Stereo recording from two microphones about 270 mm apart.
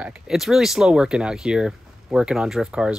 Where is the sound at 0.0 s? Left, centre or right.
Centre.